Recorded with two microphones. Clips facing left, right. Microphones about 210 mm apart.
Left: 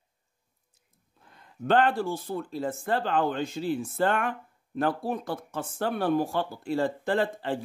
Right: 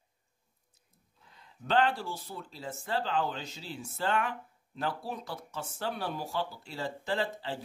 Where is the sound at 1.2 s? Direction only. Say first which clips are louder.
Left 12 dB; 55° left (ahead or behind).